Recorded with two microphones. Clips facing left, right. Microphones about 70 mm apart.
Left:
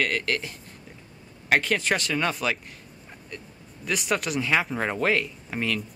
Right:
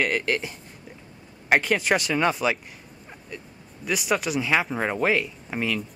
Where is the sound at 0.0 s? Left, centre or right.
Centre.